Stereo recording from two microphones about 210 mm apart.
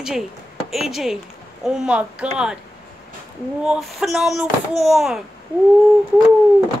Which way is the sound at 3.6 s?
Centre (ahead or behind).